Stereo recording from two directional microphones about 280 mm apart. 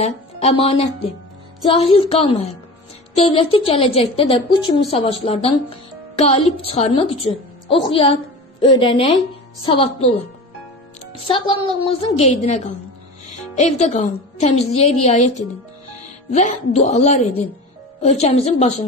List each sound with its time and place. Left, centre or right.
0.0 s a woman's voice: left
7.9 s a sound: centre
8.7 s a woman's voice: centre
11.2 s a woman's voice: centre